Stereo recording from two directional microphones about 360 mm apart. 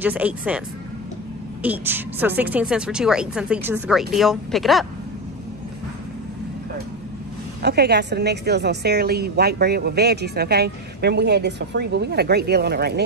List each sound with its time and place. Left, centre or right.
0.0 s a woman's voice: centre
1.6 s a woman's voice: centre
7.6 s a woman's voice: right